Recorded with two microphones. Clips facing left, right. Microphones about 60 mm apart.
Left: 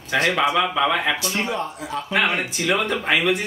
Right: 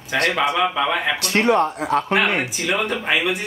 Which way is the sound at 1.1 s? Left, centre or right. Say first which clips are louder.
Right 7 dB; right.